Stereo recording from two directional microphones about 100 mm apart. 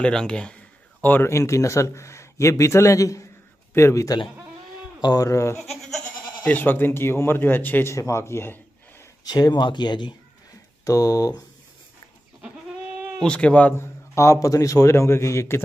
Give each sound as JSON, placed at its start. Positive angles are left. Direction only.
{"t": 0.0, "sound": "speech", "side_deg": 10}
{"t": 1.2, "sound": "a man's voice", "side_deg": 30}
{"t": 5.6, "sound": "goat", "side_deg": 0}
{"t": 6.5, "sound": "speech", "side_deg": 20}
{"t": 9.2, "sound": "speech", "side_deg": 40}
{"t": 10.9, "sound": "a man's voice", "side_deg": 35}
{"t": 13.2, "sound": "speech", "side_deg": 10}
{"t": 14.1, "sound": "speech", "side_deg": 30}